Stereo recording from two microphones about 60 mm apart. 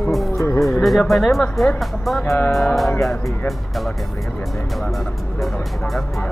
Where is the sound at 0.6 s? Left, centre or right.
Centre.